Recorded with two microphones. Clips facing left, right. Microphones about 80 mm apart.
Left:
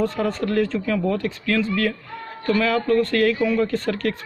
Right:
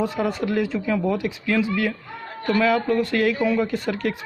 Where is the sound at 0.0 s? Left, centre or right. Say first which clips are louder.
Left 1 dB; centre.